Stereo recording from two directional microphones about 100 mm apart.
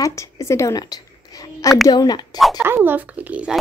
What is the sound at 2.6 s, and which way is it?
Speech, 20° right (ahead or behind).